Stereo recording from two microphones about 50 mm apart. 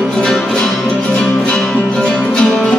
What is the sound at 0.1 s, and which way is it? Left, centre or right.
Music, centre.